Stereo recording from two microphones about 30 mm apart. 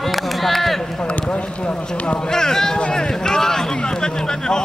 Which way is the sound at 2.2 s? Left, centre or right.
Left.